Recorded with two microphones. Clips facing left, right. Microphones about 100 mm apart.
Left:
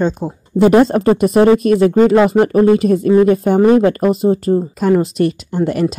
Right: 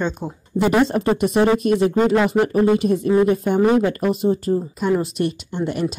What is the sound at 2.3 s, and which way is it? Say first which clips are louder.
Speech: left 6 dB; 75° left (ahead or behind).